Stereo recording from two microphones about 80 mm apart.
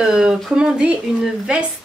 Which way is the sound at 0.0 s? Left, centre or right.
Centre.